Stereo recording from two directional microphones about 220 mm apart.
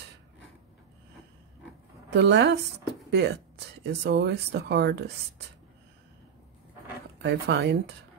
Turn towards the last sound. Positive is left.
turn(degrees=-50)  # may be behind; listen again after turning